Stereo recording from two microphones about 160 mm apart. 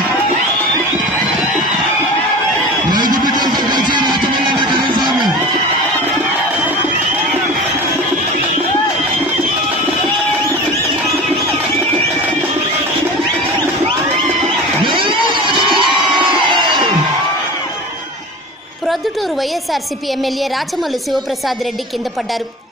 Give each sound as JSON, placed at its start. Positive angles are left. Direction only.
{"t": 3.3, "sound": "music", "side_deg": -25}
{"t": 14.9, "sound": "crowd", "side_deg": -30}